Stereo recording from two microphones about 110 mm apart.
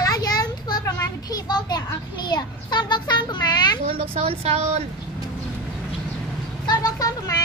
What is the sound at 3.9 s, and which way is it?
Speech, 55° right (ahead or behind).